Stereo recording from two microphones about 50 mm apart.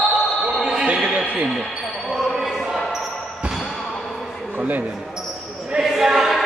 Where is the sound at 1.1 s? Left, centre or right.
Right.